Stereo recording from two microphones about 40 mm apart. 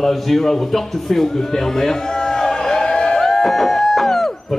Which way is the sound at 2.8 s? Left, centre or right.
Left.